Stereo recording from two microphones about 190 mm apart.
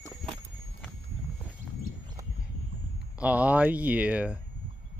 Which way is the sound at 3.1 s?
5° right (ahead or behind).